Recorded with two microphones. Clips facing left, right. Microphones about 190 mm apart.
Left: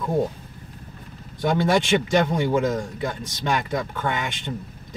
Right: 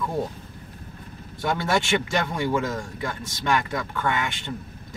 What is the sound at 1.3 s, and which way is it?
A man's voice, 15° left (ahead or behind).